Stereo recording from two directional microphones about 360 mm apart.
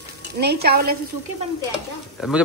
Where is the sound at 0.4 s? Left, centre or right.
Right.